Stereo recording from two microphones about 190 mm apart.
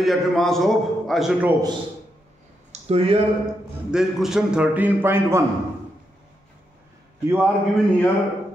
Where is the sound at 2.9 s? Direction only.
30° right (ahead or behind).